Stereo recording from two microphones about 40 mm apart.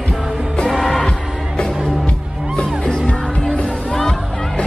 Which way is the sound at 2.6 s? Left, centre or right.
Left.